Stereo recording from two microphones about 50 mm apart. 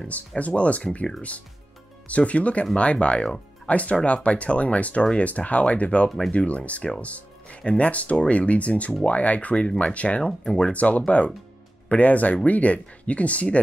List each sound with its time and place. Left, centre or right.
0.1 s speech: left
2.0 s speech: left
6.0 s speech: centre
6.3 s speech: left